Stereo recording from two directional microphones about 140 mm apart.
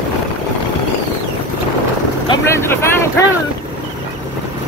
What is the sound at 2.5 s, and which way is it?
Vehicle, 20° left (ahead or behind).